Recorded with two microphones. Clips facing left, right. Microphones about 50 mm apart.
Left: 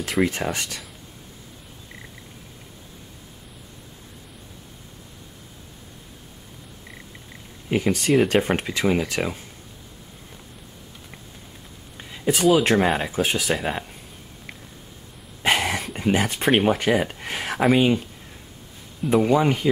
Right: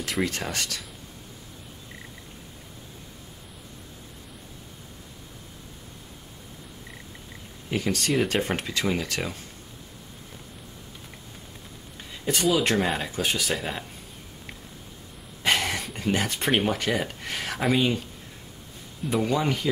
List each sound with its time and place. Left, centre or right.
0.2 s speech: centre
7.7 s speech: centre
8.1 s speech: centre
8.4 s speech: centre
12.0 s a sound: centre
12.4 s speech: centre
12.7 s speech: centre
15.4 s a sound: centre
16.0 s speech: centre
19.2 s speech: centre